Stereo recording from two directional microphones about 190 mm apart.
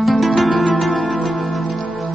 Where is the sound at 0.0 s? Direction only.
Centre (ahead or behind).